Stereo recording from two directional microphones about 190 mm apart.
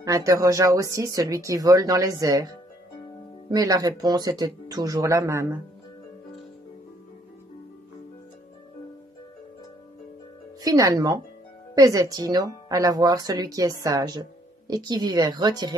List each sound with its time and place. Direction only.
0.0 s speech: 15° right (ahead or behind)
3.4 s speech: 20° right (ahead or behind)
10.6 s speech: 20° right (ahead or behind)